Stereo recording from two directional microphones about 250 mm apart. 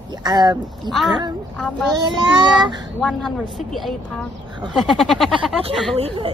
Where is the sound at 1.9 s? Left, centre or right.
Centre.